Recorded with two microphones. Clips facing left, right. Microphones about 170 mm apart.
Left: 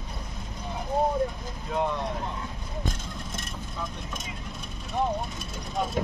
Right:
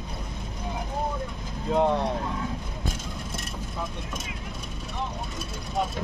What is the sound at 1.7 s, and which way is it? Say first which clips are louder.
Speech: right 5 dB; 35° right (ahead or behind).